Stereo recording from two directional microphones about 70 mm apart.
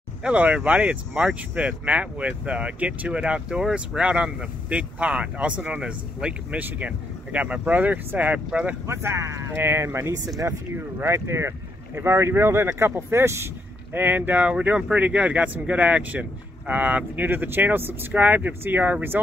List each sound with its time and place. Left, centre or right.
0.2 s speech: centre
8.8 s speech: right
9.6 s speech: right
13.9 s speech: right